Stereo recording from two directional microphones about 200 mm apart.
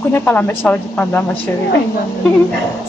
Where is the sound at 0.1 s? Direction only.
10° left (ahead or behind).